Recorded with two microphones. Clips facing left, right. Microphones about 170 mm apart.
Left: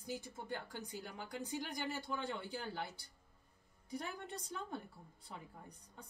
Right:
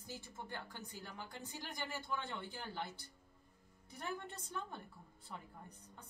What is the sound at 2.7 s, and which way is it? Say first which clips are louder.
Speech: left 1 dB; 10° left (ahead or behind).